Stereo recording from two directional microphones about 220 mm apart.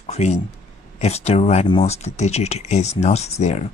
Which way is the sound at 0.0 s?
30° left (ahead or behind).